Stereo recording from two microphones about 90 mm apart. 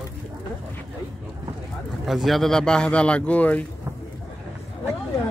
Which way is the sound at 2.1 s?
Centre (ahead or behind).